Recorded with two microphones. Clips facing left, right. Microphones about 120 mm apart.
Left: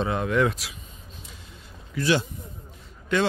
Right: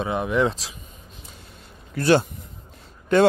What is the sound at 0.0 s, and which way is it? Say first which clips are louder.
Speech: right 1 dB; 20° right (ahead or behind).